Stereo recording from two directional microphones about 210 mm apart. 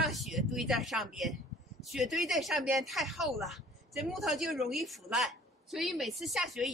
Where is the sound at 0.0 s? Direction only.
Centre (ahead or behind).